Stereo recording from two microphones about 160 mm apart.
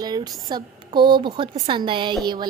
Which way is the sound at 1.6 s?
30° right (ahead or behind).